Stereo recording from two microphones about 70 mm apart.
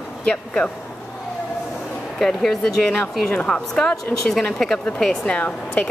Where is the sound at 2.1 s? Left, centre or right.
Centre.